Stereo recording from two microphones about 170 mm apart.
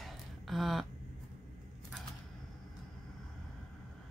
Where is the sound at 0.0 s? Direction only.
Centre (ahead or behind).